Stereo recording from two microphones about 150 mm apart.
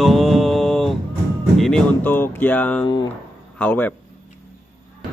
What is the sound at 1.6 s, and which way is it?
A man's voice, 5° left (ahead or behind).